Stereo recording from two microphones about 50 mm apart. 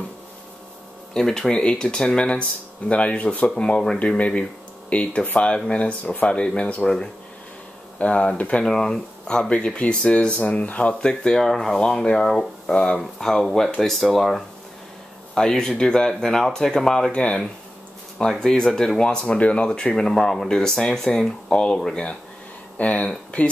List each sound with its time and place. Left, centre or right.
1.1 s speech: centre
18.4 s speech: centre
19.3 s speech: left